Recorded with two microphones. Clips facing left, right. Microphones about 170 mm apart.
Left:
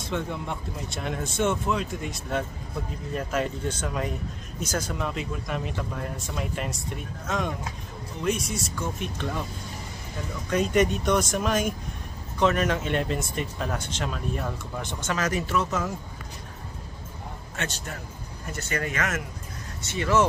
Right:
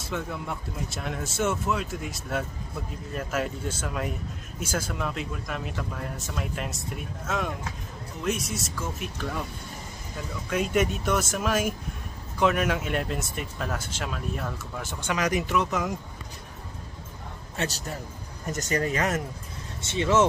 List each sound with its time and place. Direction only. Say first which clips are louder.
0.0 s speech: left 2 dB; 5° right (ahead or behind)
10.5 s speech: left 3 dB; 5° right (ahead or behind)
17.6 s speech: right 3 dB; 35° right (ahead or behind)
19.8 s speech: right 1 dB; 25° right (ahead or behind)